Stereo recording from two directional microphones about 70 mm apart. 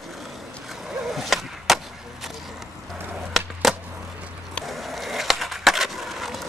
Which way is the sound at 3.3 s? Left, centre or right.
Centre.